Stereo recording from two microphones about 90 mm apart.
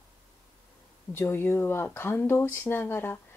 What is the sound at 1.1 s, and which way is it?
A woman's voice, 25° left (ahead or behind).